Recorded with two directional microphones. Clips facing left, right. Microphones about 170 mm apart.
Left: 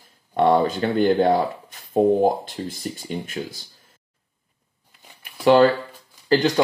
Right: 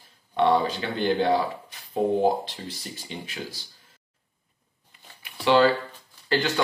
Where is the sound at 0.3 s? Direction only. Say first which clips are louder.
Left 4 dB; 45° left (ahead or behind).